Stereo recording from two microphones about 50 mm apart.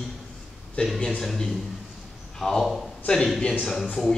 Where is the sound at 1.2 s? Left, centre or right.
Centre.